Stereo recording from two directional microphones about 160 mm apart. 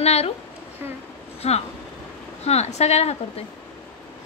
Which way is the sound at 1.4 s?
40° left (ahead or behind).